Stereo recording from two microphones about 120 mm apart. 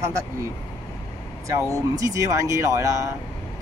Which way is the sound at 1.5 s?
25° right (ahead or behind).